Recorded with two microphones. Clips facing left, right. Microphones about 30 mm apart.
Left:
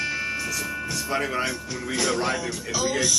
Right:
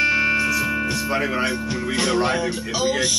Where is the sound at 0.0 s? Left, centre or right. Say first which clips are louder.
Right 9 dB; right.